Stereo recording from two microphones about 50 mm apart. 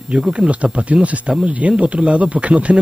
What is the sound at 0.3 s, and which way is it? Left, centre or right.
Speech, right.